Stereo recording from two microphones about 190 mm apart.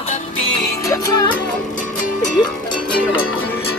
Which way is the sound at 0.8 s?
15° left (ahead or behind).